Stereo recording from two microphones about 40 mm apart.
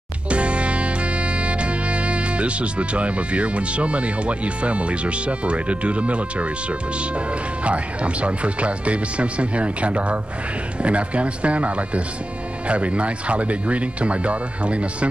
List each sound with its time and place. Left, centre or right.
0.3 s music: right
7.6 s speech: right